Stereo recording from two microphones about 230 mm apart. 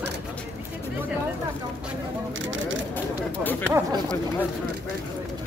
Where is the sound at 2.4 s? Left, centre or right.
Right.